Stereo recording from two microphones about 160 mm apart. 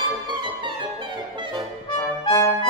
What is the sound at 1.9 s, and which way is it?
Brass instrument, 20° left (ahead or behind).